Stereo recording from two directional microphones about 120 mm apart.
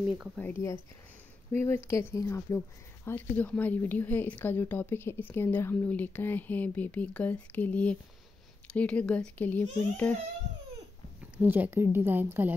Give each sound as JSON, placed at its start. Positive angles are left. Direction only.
{"t": 0.4, "sound": "speech", "side_deg": 20}
{"t": 11.3, "sound": "a woman's voice", "side_deg": -15}